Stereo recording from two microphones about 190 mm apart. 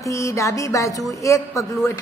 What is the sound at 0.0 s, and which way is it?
A woman's voice, 15° left (ahead or behind).